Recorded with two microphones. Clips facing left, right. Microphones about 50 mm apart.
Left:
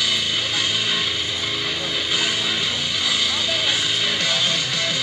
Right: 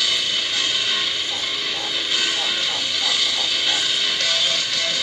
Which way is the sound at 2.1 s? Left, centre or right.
Centre.